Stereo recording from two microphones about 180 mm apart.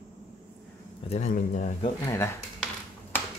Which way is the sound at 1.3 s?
50° left (ahead or behind).